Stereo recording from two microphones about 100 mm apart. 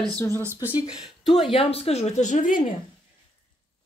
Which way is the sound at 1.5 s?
80° left.